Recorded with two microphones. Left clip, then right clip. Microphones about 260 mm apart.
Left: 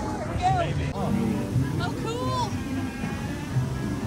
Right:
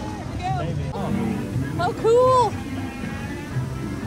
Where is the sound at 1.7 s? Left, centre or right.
Centre.